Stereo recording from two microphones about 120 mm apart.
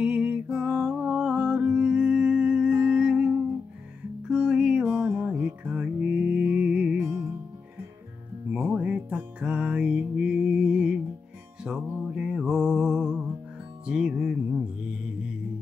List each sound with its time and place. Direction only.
0.0 s music: 10° right (ahead or behind)
4.9 s music: 20° right (ahead or behind)
7.0 s music: 20° right (ahead or behind)
8.5 s music: 10° right (ahead or behind)